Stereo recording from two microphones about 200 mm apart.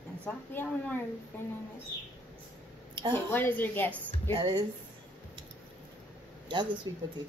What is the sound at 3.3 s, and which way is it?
Speech, 10° left (ahead or behind).